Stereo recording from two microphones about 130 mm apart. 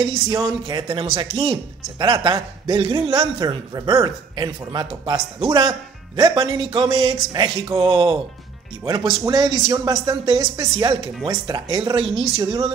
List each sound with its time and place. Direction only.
0.3 s speech: 30° right (ahead or behind)
9.2 s speech: 30° right (ahead or behind)
12.4 s speech: 25° right (ahead or behind)